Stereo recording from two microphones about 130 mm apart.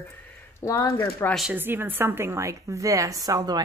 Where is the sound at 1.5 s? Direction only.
15° right (ahead or behind).